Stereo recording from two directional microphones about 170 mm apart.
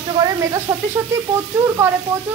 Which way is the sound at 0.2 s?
20° right (ahead or behind).